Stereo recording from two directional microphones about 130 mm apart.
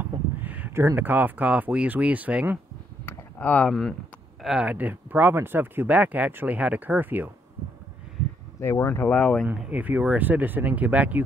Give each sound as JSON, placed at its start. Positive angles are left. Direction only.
{"t": 0.0, "sound": "speech", "side_deg": -15}
{"t": 3.1, "sound": "a sound", "side_deg": 10}
{"t": 4.4, "sound": "speech", "side_deg": -5}
{"t": 8.5, "sound": "speech", "side_deg": 20}
{"t": 9.5, "sound": "speech", "side_deg": -10}